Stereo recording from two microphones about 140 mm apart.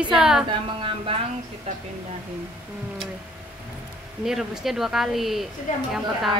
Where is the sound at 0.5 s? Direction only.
40° right (ahead or behind).